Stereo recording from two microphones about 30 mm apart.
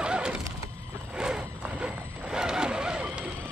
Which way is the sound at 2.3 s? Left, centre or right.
Right.